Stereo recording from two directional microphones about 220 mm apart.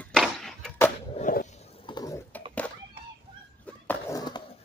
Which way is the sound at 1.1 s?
35° left (ahead or behind).